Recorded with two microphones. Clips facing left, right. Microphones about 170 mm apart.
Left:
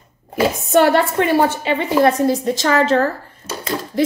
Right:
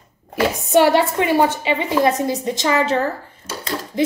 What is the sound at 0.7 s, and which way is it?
A woman's voice, 15° right (ahead or behind).